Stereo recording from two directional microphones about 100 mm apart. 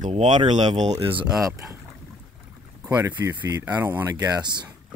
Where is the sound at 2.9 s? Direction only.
20° right (ahead or behind); by 4.7 s 45° right (ahead or behind).